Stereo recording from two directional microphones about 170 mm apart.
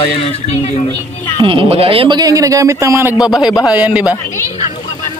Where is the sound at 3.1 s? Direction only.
25° left (ahead or behind).